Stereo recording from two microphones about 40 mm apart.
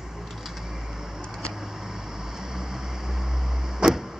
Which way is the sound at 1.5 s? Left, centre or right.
Centre.